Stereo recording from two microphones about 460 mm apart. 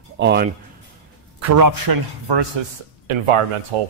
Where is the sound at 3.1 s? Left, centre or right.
Right.